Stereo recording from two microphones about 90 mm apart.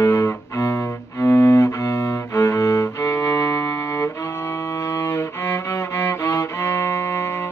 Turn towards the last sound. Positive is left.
turn(degrees=30)  # may be behind; listen again after turning